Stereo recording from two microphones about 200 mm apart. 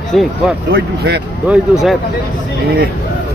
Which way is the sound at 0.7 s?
50° right (ahead or behind).